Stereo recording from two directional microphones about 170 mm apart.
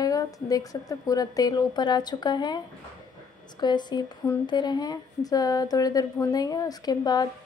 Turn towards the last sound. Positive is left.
turn(degrees=25)  # may be behind; listen again after turning